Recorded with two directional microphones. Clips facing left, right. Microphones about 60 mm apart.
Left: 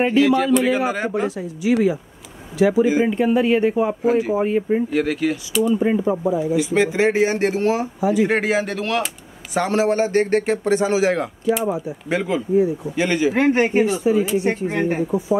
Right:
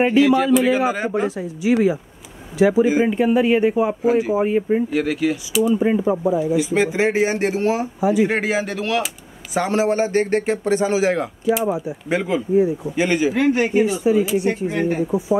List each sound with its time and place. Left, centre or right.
0.0 s speech: centre
1.2 s speech: centre
8.0 s speech: centre
8.3 s speech: centre
13.3 s speech: left
15.0 s speech: centre